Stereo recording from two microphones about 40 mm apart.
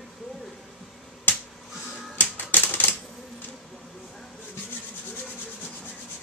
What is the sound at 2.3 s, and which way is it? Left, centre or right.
Typewriter, left.